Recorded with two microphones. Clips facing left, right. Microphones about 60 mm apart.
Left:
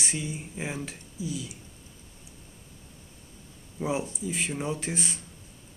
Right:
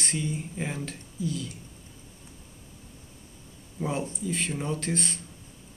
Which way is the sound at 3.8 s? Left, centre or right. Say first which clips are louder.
Left 1 dB; centre.